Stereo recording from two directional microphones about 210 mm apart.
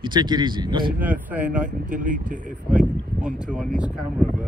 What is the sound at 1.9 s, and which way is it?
Speech, 40° right (ahead or behind).